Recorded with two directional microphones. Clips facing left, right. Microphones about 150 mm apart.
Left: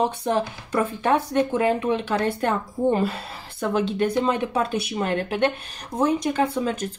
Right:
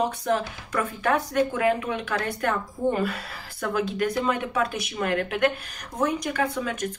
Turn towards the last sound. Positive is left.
turn(degrees=30)  # may be behind; listen again after turning